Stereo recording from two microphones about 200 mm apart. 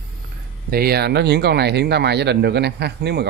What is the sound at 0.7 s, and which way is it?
Speech, 50° right (ahead or behind).